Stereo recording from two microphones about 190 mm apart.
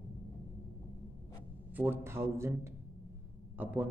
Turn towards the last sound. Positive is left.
turn(degrees=-10)  # may be behind; listen again after turning